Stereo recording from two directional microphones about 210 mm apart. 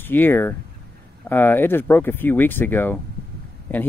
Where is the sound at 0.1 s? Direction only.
10° left (ahead or behind).